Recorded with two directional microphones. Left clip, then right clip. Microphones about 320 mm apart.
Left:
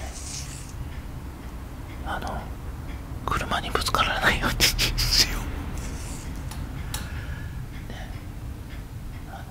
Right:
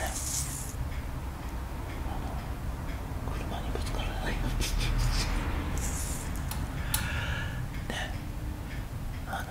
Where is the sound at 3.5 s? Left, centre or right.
Left.